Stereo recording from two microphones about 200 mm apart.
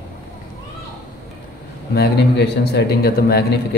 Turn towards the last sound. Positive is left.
turn(degrees=50)  # may be behind; listen again after turning